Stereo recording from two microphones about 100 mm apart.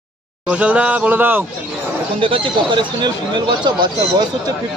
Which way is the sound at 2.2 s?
60° right (ahead or behind).